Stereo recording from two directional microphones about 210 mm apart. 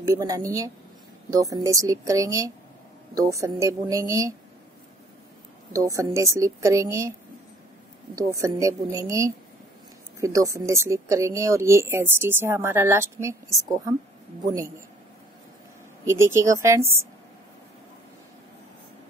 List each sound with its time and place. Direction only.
0.0 s speech: 15° right (ahead or behind)
5.7 s speech: 15° right (ahead or behind)
8.2 s speech: 15° right (ahead or behind)
16.1 s speech: 10° right (ahead or behind)